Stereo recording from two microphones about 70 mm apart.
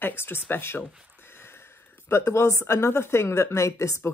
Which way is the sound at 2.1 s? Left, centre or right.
Left.